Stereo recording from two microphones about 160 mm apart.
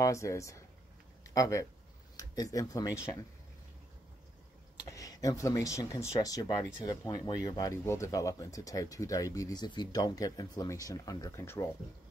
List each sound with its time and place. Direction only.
0.0 s speech: 20° left (ahead or behind)
4.8 s speech: 20° left (ahead or behind)